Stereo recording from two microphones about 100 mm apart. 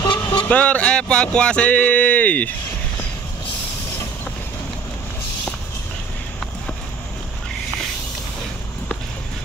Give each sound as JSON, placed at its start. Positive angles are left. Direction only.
{"t": 0.0, "sound": "vehicle", "side_deg": 50}
{"t": 0.5, "sound": "speech", "side_deg": 15}